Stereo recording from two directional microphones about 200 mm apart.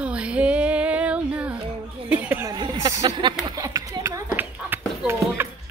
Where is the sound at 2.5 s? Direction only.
20° right (ahead or behind).